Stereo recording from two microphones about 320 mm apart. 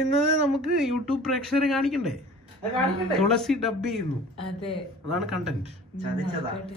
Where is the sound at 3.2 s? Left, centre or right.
Centre.